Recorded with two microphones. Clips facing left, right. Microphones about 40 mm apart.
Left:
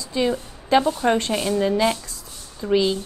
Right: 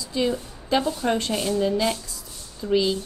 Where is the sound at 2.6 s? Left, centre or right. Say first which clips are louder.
Left 2 dB; centre.